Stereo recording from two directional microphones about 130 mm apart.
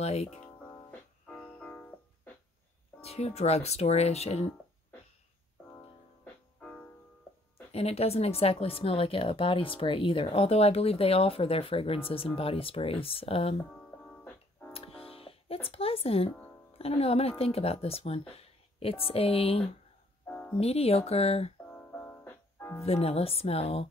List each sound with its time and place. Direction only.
0.0 s speech: 55° left (ahead or behind)
1.2 s music: 10° left (ahead or behind)
3.0 s speech: 55° left (ahead or behind)
7.7 s a woman's voice: 55° left (ahead or behind)
13.7 s music: 5° left (ahead or behind)
14.7 s music: 50° left (ahead or behind)
16.7 s a woman's voice: 50° left (ahead or behind)
20.2 s music: 15° left (ahead or behind)
20.5 s a woman's voice: 50° left (ahead or behind)
21.6 s music: 10° left (ahead or behind)
22.8 s a woman's voice: 50° left (ahead or behind)